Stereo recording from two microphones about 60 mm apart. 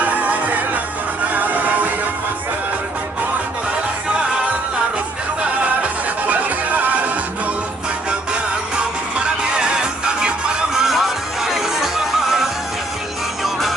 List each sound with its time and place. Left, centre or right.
0.2 s music: right
5.8 s music: right
9.2 s music: centre